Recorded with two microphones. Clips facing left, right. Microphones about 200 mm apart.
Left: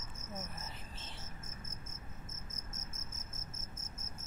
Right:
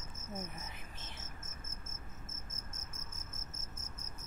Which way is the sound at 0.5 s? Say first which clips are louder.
Even; 15° right (ahead or behind).